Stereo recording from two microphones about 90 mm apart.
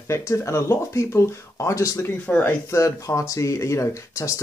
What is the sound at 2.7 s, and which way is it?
Speech, 35° left (ahead or behind).